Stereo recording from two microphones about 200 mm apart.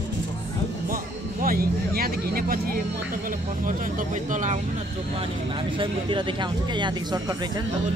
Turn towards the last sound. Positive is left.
turn(degrees=-20)  # may be behind; listen again after turning